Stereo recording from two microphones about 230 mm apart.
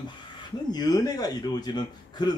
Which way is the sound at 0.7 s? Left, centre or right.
Centre.